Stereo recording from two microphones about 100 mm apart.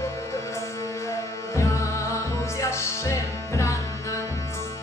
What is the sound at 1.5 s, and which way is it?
Music, 30° left (ahead or behind).